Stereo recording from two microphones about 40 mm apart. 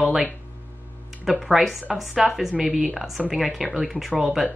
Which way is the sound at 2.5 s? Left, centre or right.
Right.